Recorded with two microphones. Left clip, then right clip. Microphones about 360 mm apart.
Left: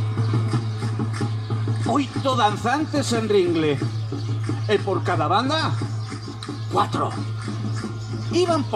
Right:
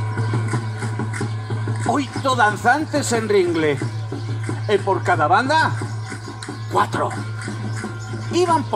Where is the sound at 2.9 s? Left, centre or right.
Centre.